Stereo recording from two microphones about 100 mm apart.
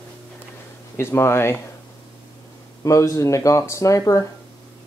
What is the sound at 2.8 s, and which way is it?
Speech, 30° left (ahead or behind).